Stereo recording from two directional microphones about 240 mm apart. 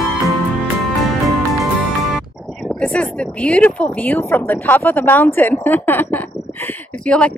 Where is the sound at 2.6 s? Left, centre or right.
Centre.